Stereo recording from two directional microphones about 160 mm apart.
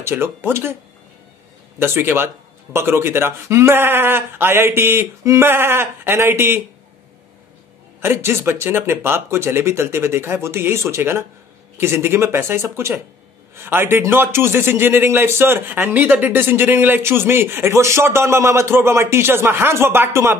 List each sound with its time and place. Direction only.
0.0 s a man's voice: 15° right (ahead or behind)
1.8 s a man's voice: 15° right (ahead or behind)
8.0 s a man's voice: 15° right (ahead or behind)